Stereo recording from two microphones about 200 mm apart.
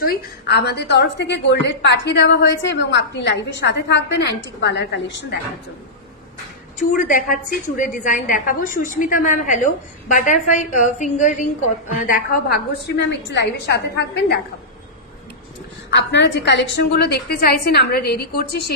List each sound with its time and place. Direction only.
0.0 s a woman's voice: 50° left (ahead or behind)
6.8 s a woman's voice: 40° left (ahead or behind)
12.1 s a woman's voice: 50° left (ahead or behind)
15.9 s a woman's voice: 65° left (ahead or behind)